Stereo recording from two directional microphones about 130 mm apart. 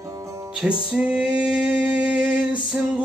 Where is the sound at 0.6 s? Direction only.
5° right (ahead or behind).